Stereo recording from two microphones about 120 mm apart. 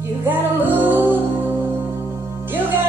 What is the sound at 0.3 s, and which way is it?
Music, 15° right (ahead or behind).